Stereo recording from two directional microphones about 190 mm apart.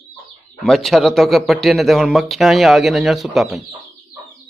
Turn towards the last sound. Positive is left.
turn(degrees=0)  # may be behind; listen again after turning